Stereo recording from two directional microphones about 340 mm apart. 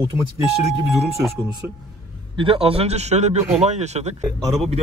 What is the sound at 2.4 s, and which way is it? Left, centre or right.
Speech, centre.